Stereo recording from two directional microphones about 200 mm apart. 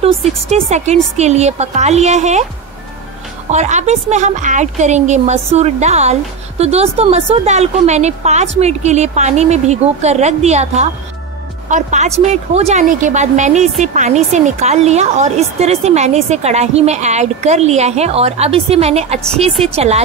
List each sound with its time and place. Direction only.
0.0 s a woman's voice: 35° right (ahead or behind)
3.5 s a woman's voice: 35° right (ahead or behind)